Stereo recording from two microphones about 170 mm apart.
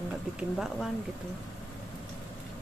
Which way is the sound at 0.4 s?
5° right (ahead or behind).